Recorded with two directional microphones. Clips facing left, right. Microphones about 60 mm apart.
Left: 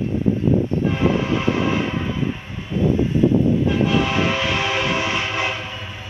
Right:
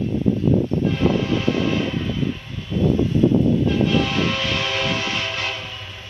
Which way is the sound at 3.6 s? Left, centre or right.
Centre.